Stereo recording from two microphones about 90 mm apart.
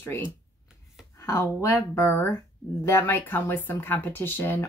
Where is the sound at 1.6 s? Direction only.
30° left (ahead or behind).